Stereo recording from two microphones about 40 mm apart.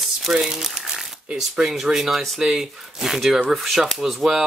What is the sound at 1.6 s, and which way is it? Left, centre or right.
Speech, centre.